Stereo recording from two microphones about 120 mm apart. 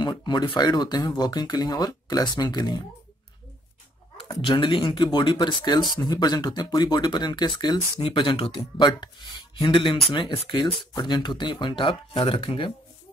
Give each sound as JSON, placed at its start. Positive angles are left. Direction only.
{"t": 0.0, "sound": "speech", "side_deg": 35}
{"t": 4.5, "sound": "speech", "side_deg": 45}